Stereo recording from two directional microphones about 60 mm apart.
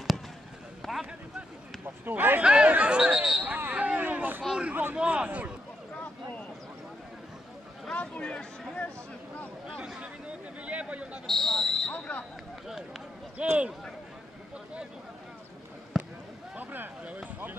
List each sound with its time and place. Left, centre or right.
0.8 s vehicle: centre
2.0 s speech: right
2.4 s speech: centre
3.4 s a sound: right
4.4 s speech: centre
7.9 s speech: centre
9.8 s speech: centre
11.2 s speech: centre
11.9 s speech: left
13.4 s speech: right
15.9 s basketball bounce: centre
16.5 s speech: right